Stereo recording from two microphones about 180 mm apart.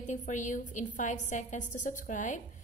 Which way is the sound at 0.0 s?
40° left (ahead or behind).